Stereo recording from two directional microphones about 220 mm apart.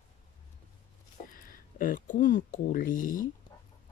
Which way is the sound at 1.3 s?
40° left (ahead or behind).